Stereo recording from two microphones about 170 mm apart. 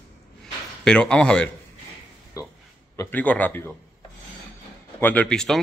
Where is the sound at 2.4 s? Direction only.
20° left (ahead or behind).